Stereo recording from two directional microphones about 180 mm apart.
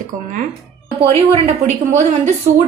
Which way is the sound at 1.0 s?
30° right (ahead or behind).